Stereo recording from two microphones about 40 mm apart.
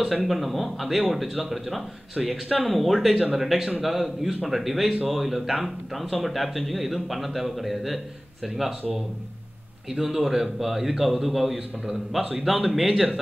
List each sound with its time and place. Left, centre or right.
0.0 s a man's voice: centre
2.6 s a man's voice: centre
9.8 s a man's voice: centre
12.2 s a man's voice: right
12.6 s speech: centre